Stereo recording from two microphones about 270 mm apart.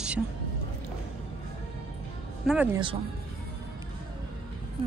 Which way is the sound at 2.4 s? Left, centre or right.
Centre.